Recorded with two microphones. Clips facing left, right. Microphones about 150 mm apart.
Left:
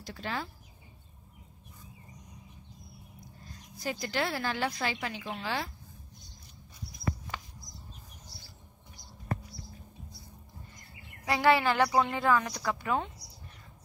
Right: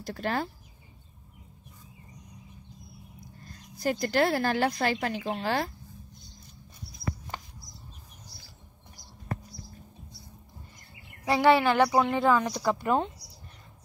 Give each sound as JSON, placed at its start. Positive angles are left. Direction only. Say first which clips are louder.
{"t": 0.0, "sound": "speech", "louder": "right 6 dB", "side_deg": -50}
{"t": 3.4, "sound": "a woman's voice", "louder": "right 7 dB", "side_deg": -50}
{"t": 11.2, "sound": "a woman's voice", "louder": "right 4 dB", "side_deg": -15}
{"t": 12.5, "sound": "a woman's voice", "louder": "right 5 dB", "side_deg": -30}